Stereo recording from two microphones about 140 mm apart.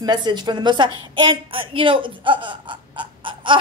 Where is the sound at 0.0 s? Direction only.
30° right (ahead or behind).